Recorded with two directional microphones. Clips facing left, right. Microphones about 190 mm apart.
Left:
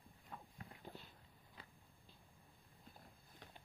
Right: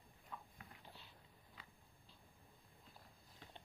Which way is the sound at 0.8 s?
50° left (ahead or behind).